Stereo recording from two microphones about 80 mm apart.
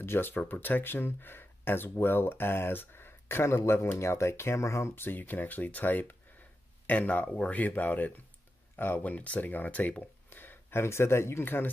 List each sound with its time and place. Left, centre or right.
0.0 s speech: left